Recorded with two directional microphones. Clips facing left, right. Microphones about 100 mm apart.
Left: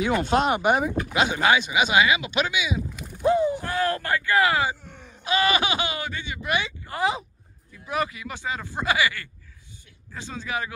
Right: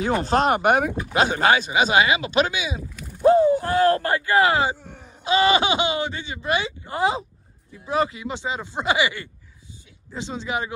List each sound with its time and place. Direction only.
0.0 s speech: 40° right (ahead or behind); by 0.9 s 55° right (ahead or behind)
1.1 s speech: 45° right (ahead or behind); by 4.7 s 25° right (ahead or behind)
4.8 s groan: 45° right (ahead or behind)
5.2 s speech: 25° right (ahead or behind)